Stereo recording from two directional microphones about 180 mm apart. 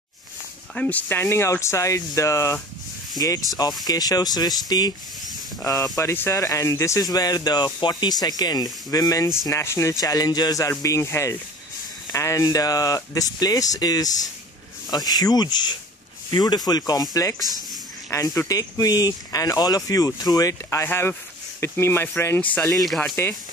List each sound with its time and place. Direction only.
0.7 s speech: 10° left (ahead or behind)
5.9 s speech: 15° left (ahead or behind)